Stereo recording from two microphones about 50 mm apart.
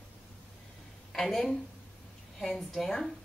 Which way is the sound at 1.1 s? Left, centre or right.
Centre.